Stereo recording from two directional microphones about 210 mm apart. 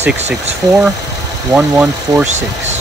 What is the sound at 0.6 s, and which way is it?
Speech, 15° right (ahead or behind).